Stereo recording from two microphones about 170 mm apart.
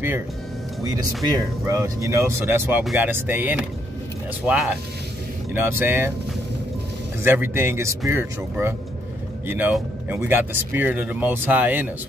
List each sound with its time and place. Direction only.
0.9 s speech: 20° right (ahead or behind)
2.8 s speech: centre (ahead or behind)
3.1 s speech: 10° right (ahead or behind)
7.2 s speech: 15° right (ahead or behind)